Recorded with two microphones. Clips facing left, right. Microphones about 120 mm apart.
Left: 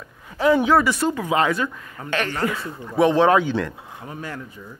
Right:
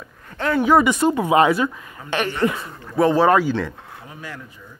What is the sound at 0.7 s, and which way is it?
Speech, 15° right (ahead or behind).